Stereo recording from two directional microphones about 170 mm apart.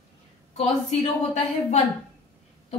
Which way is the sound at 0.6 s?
40° left (ahead or behind).